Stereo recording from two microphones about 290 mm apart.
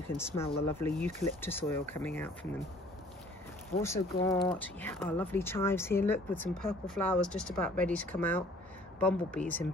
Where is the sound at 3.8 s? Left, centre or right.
Centre.